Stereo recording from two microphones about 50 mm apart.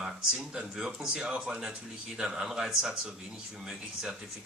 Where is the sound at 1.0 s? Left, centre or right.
Right.